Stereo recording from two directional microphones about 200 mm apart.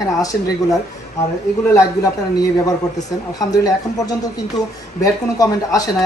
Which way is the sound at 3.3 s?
20° left (ahead or behind).